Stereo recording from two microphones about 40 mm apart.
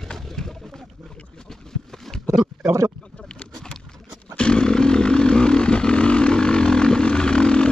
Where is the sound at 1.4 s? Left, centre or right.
Centre.